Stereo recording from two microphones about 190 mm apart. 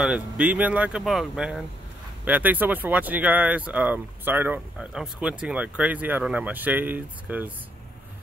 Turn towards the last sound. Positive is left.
turn(degrees=-10)  # may be behind; listen again after turning